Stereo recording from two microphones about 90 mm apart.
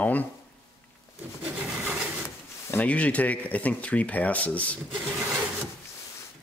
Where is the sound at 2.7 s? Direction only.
15° left (ahead or behind).